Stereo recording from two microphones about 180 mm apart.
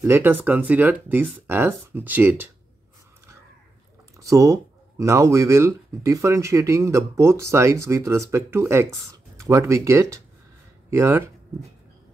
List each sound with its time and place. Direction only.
0.0 s speech: 10° right (ahead or behind)
4.2 s speech: 15° right (ahead or behind)